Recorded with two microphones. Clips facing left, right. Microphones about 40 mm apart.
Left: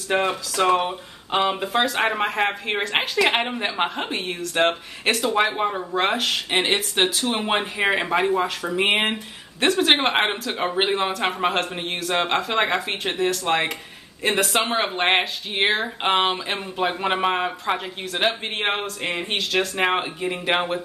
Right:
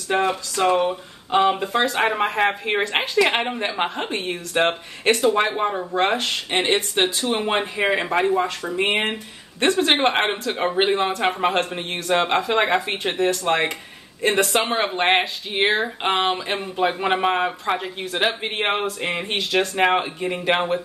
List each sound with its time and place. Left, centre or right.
0.1 s speech: centre
0.6 s speech: left
1.3 s speech: centre
1.9 s speech: centre
8.7 s speech: left
10.0 s speech: centre